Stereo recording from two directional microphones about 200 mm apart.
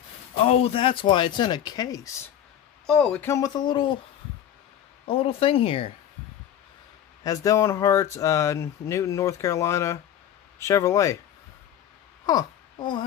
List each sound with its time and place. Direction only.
0.4 s speech: 30° left (ahead or behind)
2.9 s speech: 5° left (ahead or behind); by 4.0 s 25° left (ahead or behind)
5.0 s speech: 30° left (ahead or behind)
7.2 s speech: 15° left (ahead or behind)
12.3 s speech: 20° left (ahead or behind)